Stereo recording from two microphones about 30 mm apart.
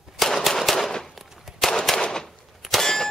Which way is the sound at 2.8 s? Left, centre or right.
Centre.